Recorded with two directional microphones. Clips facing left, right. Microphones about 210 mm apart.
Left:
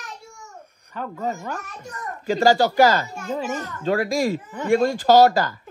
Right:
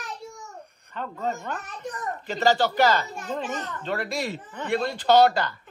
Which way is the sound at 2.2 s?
45° left (ahead or behind).